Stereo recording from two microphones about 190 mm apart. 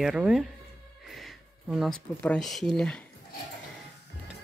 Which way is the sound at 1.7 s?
Centre (ahead or behind).